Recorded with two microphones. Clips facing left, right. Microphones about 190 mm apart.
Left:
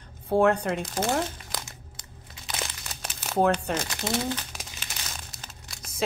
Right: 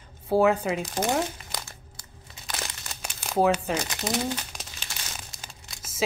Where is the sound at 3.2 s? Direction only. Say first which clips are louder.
Right 1 dB; centre (ahead or behind).